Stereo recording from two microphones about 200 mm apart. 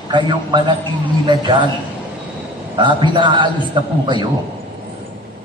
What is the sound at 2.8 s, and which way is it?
Speech, 25° right (ahead or behind).